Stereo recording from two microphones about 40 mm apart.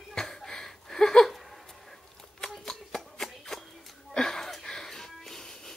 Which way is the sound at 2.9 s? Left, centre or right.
Centre.